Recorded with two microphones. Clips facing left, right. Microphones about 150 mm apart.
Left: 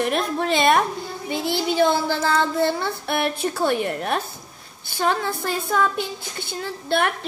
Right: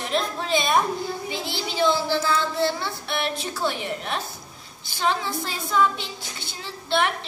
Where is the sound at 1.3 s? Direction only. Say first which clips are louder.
Left 7 dB; 50° left (ahead or behind).